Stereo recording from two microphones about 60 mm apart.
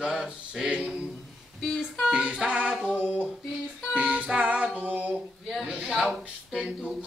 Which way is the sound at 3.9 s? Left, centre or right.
Centre.